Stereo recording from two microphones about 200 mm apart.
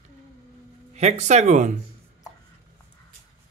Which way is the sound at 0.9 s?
35° right (ahead or behind).